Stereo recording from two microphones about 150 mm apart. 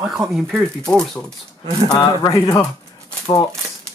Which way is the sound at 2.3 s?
20° left (ahead or behind).